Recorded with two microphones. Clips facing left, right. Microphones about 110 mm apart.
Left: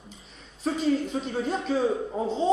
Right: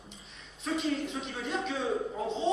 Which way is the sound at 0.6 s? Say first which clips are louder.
Left 6 dB; 40° left (ahead or behind).